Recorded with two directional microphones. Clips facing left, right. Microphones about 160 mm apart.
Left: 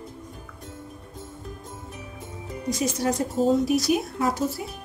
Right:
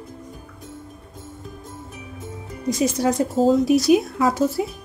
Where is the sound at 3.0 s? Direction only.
90° right.